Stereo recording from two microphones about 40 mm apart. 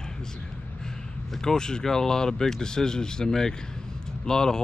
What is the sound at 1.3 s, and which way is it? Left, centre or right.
Speech, centre.